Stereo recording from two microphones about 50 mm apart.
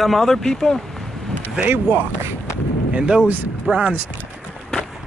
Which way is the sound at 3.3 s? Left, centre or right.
Right.